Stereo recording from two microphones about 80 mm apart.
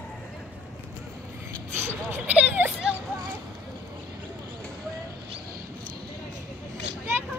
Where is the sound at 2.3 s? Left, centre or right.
Centre.